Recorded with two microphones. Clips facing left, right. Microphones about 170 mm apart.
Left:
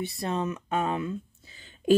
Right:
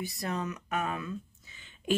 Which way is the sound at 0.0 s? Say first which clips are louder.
Left 5 dB; 25° left (ahead or behind).